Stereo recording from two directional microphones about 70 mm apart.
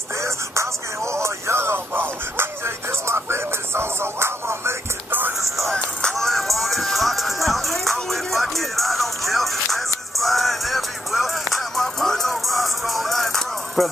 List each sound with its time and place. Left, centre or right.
0.2 s music: right
5.4 s music: centre